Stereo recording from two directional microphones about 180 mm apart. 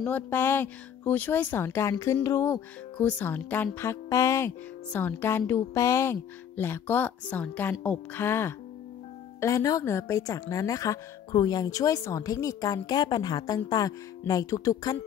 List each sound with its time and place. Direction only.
0.0 s a woman's voice: 10° left (ahead or behind)